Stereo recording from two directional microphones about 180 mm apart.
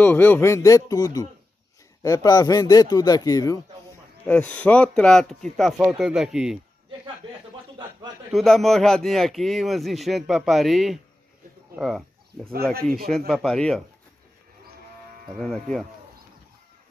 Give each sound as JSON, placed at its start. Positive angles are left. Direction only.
{"t": 0.0, "sound": "a man's voice", "side_deg": 10}
{"t": 4.3, "sound": "speech", "side_deg": 10}
{"t": 8.3, "sound": "speech", "side_deg": 0}
{"t": 13.3, "sound": "speech", "side_deg": 0}
{"t": 15.4, "sound": "speech", "side_deg": 5}